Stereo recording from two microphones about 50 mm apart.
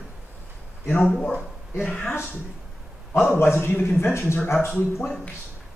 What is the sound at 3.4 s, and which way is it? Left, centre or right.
A man's voice, left.